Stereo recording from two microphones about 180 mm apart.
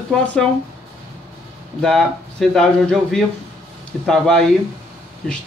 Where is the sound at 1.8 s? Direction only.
Centre (ahead or behind).